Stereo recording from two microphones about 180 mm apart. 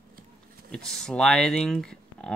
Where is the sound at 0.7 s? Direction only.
5° left (ahead or behind).